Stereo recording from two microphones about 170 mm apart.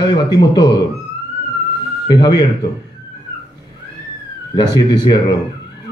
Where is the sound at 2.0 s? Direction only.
25° left (ahead or behind).